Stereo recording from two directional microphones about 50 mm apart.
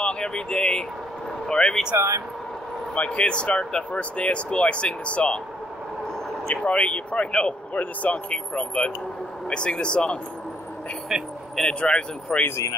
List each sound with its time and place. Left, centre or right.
0.0 s speech: centre
2.0 s speech: right
2.9 s speech: left
6.5 s speech: left
7.7 s speech: left
11.6 s speech: centre